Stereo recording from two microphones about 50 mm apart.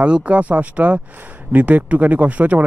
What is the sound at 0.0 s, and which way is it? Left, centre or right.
Speech, right.